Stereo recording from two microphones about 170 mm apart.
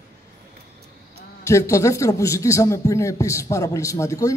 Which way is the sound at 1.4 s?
15° left (ahead or behind).